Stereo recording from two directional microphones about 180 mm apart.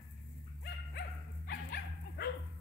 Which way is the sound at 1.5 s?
65° left (ahead or behind).